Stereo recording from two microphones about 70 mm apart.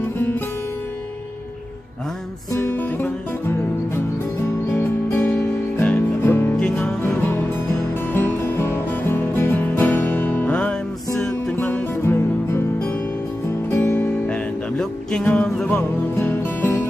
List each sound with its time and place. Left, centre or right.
2.6 s music: left
6.5 s music: centre
11.5 s music: left
14.2 s music: centre